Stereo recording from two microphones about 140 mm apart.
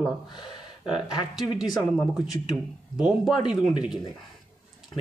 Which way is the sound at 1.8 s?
5° left (ahead or behind).